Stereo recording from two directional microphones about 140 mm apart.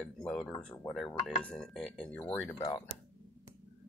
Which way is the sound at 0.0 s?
5° left (ahead or behind).